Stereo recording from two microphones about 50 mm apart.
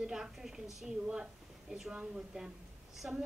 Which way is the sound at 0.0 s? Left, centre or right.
Centre.